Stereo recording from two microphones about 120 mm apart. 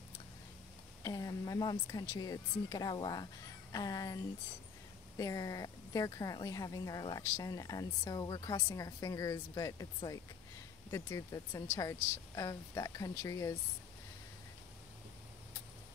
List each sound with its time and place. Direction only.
1.0 s a woman's voice: 30° left (ahead or behind)
10.9 s a woman's voice: 25° left (ahead or behind)